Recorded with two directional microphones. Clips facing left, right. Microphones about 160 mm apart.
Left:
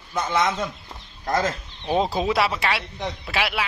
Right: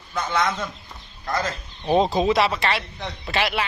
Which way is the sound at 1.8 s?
Centre (ahead or behind).